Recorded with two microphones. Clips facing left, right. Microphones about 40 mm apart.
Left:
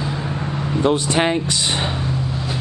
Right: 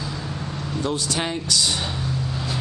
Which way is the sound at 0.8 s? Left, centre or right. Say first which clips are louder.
Left 8 dB; left.